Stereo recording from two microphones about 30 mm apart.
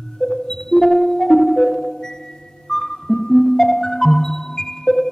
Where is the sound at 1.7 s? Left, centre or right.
Left.